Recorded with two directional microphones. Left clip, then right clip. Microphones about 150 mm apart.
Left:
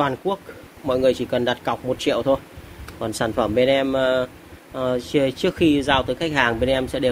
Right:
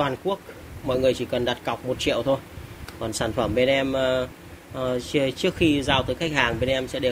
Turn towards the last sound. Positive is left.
turn(degrees=35)  # may be behind; listen again after turning